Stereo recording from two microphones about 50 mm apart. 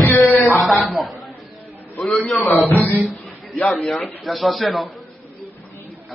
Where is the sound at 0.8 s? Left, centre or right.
Centre.